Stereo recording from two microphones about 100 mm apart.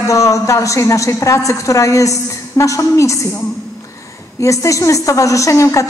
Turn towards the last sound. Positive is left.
turn(degrees=30)  # may be behind; listen again after turning